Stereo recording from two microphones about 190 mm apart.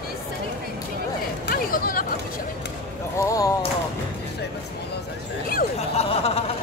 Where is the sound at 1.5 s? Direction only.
50° left (ahead or behind).